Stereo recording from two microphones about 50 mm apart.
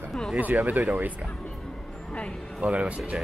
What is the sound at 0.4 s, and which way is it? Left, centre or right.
Speech, right.